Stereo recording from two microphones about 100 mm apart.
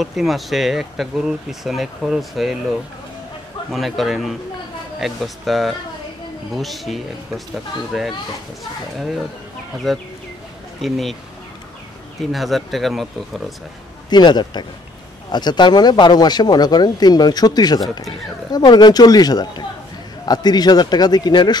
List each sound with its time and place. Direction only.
0.0 s speech: centre (ahead or behind)
3.7 s speech: centre (ahead or behind)
9.9 s speech: centre (ahead or behind)
12.2 s speech: centre (ahead or behind)
14.1 s speech: 45° left (ahead or behind)
17.7 s speech: centre (ahead or behind)
18.5 s speech: 45° left (ahead or behind)